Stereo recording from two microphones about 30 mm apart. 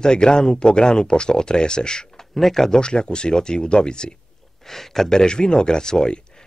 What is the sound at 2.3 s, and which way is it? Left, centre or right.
Speech, centre.